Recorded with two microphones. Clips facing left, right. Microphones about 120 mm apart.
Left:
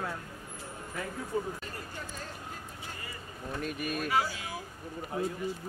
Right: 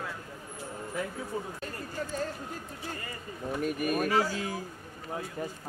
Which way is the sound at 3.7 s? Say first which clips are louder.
Right 3 dB; 45° right (ahead or behind).